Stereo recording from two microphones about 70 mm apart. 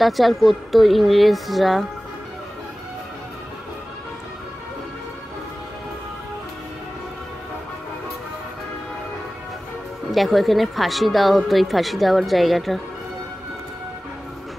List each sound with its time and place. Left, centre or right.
0.0 s speech: centre
10.1 s speech: centre